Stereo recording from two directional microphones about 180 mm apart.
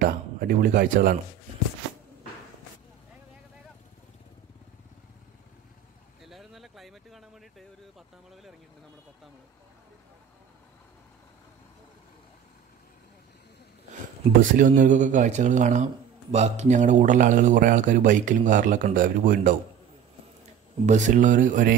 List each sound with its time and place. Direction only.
0.0 s a man's voice: 55° right (ahead or behind)
6.2 s vehicle: centre (ahead or behind)
8.3 s a sound: centre (ahead or behind)
14.6 s speech: 45° right (ahead or behind)
20.8 s speech: 45° right (ahead or behind)